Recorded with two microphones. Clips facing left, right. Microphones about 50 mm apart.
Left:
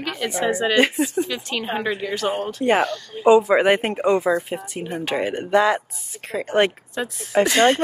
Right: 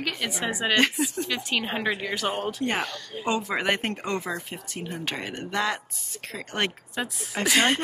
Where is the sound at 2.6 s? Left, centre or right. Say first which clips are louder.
Left 9 dB; centre.